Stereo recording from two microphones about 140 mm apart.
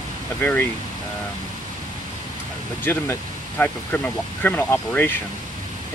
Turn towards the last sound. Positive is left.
turn(degrees=15)  # may be behind; listen again after turning